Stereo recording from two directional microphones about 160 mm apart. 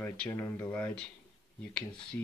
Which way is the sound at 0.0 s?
15° left (ahead or behind).